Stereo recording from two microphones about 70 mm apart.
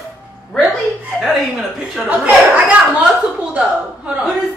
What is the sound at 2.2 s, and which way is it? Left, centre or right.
Speech, right.